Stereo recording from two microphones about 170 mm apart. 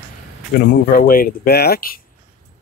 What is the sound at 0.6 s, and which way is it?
Speech, 60° left (ahead or behind).